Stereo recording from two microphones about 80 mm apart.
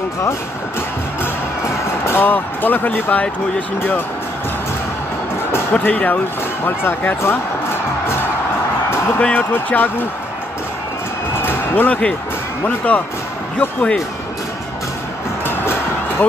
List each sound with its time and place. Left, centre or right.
2.0 s speech: left
5.7 s speech: centre
9.2 s speech: centre
11.3 s basketball bounce: left
12.6 s speech: centre
15.4 s music: left